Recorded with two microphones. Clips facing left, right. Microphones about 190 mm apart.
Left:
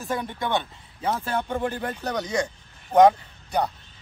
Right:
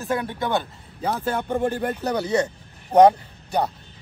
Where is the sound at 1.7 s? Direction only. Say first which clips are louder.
Right 4 dB; 30° right (ahead or behind).